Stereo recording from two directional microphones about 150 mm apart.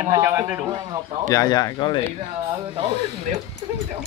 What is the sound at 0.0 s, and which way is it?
Speech, 20° right (ahead or behind).